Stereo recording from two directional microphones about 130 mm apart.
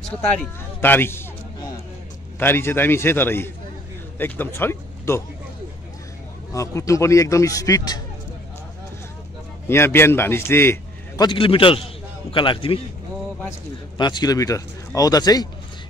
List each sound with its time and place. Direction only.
0.7 s a man's voice: 15° left (ahead or behind)
2.3 s a man's voice: 15° left (ahead or behind)
6.5 s speech: 25° left (ahead or behind)
9.7 s a man's voice: 20° left (ahead or behind)
11.1 s a man's voice: 40° left (ahead or behind)
13.9 s speech: 35° left (ahead or behind)